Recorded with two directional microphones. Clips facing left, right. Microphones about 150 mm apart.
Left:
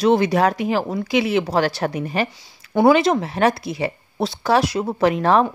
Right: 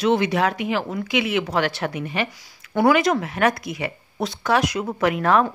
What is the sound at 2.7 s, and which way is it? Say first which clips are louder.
A woman's voice: left 3 dB; 25° left (ahead or behind).